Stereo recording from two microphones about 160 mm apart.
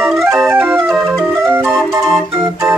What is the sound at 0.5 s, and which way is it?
Music, 10° right (ahead or behind).